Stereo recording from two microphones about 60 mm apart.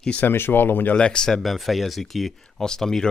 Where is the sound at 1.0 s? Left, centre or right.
Centre.